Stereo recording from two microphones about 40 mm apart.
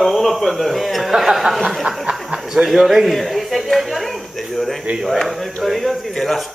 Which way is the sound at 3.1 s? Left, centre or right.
Centre.